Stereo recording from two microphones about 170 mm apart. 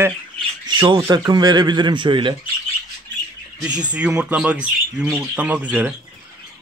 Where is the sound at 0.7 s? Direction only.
25° right (ahead or behind).